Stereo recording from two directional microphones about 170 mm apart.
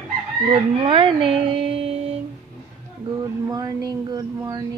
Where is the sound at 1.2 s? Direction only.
5° right (ahead or behind).